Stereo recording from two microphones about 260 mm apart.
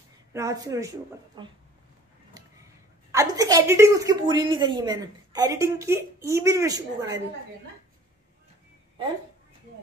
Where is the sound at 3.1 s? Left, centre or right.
Centre.